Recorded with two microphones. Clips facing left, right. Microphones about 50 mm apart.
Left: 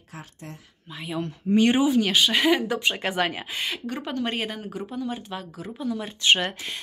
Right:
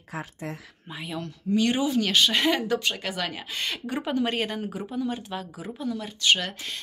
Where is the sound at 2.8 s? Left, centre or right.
Left.